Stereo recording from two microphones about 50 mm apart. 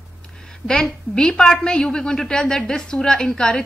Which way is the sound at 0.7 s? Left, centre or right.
Centre.